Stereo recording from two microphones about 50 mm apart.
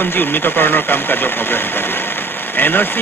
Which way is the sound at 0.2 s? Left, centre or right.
Left.